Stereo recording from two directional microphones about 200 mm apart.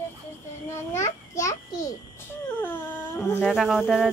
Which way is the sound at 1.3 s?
15° left (ahead or behind).